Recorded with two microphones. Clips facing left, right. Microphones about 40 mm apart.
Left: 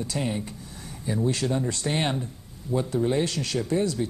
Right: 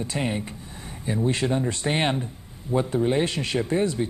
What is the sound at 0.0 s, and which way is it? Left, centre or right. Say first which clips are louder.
Speech: right 2 dB; right.